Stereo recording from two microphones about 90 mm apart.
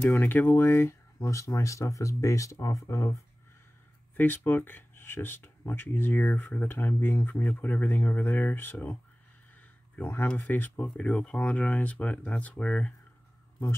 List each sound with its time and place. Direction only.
0.2 s speech: 20° left (ahead or behind); by 3.2 s 35° left (ahead or behind)
4.5 s speech: 25° left (ahead or behind)
9.9 s speech: 25° left (ahead or behind)